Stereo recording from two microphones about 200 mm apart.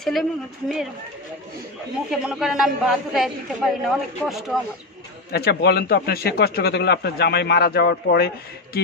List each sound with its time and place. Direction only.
0.0 s a man's voice: centre (ahead or behind)
2.0 s a man's voice: centre (ahead or behind)
5.3 s a man's voice: 55° left (ahead or behind)